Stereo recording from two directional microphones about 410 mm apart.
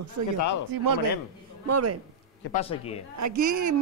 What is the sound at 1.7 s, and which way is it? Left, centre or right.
Speech, right.